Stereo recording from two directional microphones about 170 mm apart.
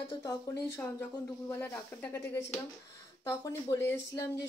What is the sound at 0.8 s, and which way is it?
Speech, 15° left (ahead or behind).